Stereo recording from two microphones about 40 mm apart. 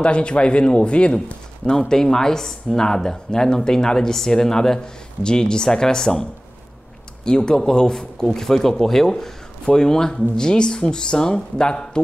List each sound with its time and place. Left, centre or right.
0.0 s speech: left
1.7 s speech: centre
7.2 s speech: centre